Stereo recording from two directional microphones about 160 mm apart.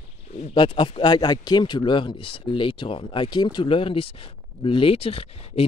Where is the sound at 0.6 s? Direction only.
30° left (ahead or behind).